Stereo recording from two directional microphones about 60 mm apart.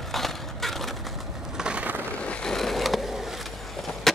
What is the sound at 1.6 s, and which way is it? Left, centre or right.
Skateboard, right.